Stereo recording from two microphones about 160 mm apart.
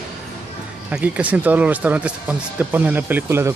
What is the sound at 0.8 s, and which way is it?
Speech, 10° right (ahead or behind).